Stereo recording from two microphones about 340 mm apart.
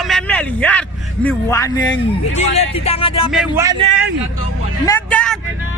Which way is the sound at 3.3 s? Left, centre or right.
Centre.